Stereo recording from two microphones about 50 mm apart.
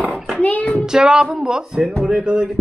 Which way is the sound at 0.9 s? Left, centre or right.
Centre.